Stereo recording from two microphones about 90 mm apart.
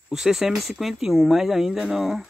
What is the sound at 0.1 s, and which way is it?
Speech, 5° right (ahead or behind).